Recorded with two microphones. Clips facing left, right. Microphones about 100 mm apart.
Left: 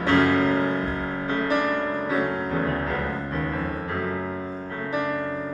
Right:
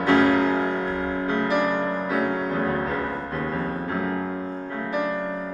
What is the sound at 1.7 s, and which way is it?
Music, 15° right (ahead or behind).